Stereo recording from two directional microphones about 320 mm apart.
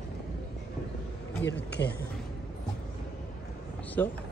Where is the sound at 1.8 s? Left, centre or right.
Left.